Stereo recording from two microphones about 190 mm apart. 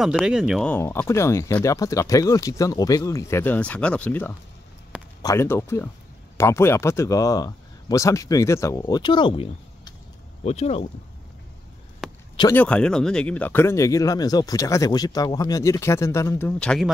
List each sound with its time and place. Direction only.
0.0 s speech: 5° right (ahead or behind); by 10.9 s 35° left (ahead or behind)
12.0 s a sound: centre (ahead or behind)
12.5 s speech: 5° left (ahead or behind)